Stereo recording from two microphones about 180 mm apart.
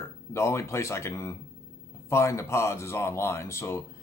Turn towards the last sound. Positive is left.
turn(degrees=15)  # may be behind; listen again after turning